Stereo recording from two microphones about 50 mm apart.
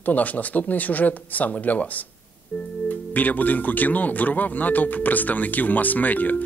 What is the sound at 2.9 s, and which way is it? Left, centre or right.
Speech, left.